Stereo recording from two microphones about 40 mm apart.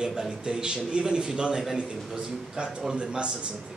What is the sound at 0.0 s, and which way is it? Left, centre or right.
A man's voice, centre.